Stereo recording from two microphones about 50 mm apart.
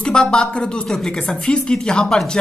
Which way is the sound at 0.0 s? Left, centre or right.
Centre.